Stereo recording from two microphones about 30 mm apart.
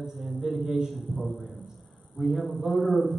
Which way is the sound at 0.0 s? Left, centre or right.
Centre.